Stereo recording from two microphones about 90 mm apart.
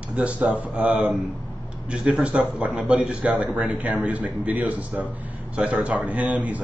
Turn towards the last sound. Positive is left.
turn(degrees=-15)  # may be behind; listen again after turning